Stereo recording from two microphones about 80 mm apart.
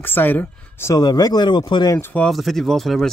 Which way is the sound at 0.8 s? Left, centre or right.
Left.